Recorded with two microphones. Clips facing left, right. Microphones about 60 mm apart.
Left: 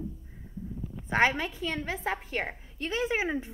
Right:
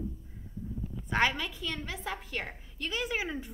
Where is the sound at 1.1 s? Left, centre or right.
Left.